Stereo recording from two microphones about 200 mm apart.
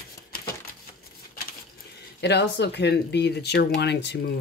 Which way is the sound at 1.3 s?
50° left (ahead or behind).